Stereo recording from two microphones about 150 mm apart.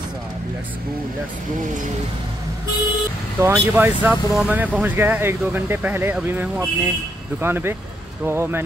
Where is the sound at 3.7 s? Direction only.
10° right (ahead or behind).